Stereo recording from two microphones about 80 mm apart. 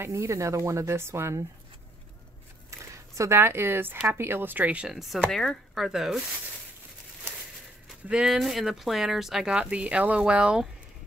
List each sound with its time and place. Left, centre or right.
0.0 s speech: right
3.2 s a woman's voice: right
4.8 s speech: centre
8.1 s speech: centre